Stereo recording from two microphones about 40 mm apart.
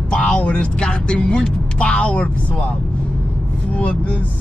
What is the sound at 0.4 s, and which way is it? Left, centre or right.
Speech, left.